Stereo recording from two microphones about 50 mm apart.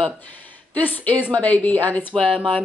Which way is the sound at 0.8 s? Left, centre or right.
Left.